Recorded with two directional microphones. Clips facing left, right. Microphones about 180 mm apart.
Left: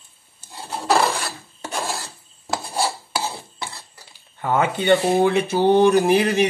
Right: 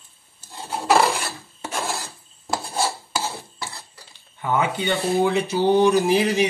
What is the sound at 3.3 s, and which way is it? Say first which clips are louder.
Stir: left 1 dB; 15° left (ahead or behind).